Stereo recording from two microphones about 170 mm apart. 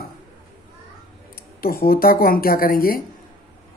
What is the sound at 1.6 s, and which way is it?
A man's voice, 60° left (ahead or behind).